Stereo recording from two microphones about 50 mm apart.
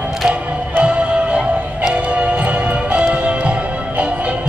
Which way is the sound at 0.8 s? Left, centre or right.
Right.